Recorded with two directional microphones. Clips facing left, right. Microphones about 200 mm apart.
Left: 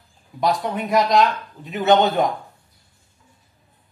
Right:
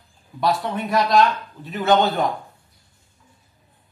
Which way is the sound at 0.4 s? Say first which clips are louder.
Left 1 dB; 20° left (ahead or behind).